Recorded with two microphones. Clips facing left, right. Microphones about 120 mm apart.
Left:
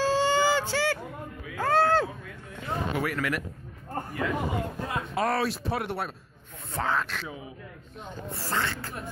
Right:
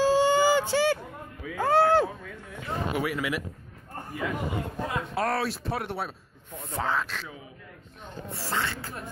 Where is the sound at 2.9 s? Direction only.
5° right (ahead or behind).